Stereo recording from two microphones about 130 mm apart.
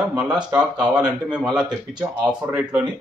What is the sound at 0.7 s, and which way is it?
Speech, 35° right (ahead or behind).